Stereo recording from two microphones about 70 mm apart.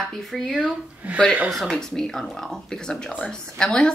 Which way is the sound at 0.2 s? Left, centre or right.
Centre.